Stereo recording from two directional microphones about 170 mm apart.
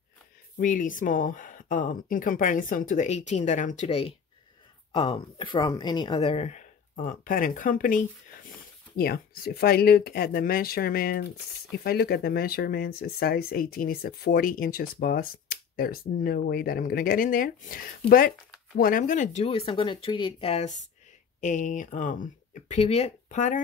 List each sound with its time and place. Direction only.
0.6 s speech: 50° left (ahead or behind)
8.9 s speech: 65° left (ahead or behind); by 23.6 s 45° left (ahead or behind)